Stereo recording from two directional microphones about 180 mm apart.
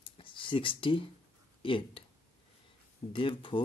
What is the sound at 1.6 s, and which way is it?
Speech, 30° left (ahead or behind).